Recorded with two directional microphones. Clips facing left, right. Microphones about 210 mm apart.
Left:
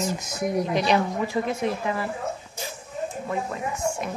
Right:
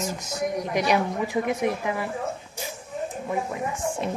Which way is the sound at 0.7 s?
15° right (ahead or behind).